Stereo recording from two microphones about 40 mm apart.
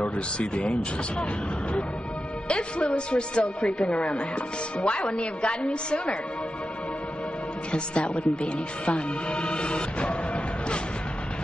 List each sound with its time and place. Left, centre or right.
0.0 s speech: left
2.4 s speech: left
7.7 s speech: left